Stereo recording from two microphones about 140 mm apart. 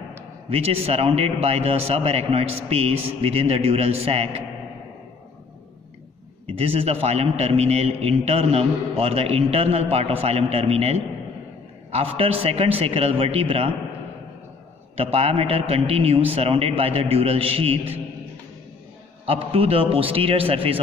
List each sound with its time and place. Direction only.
0.5 s a man's voice: 45° right (ahead or behind)
6.5 s a man's voice: 45° right (ahead or behind)
15.0 s a man's voice: 45° right (ahead or behind)
19.2 s a man's voice: 40° right (ahead or behind)